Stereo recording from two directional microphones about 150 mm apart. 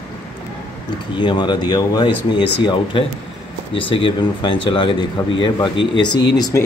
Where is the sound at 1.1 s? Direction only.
30° left (ahead or behind).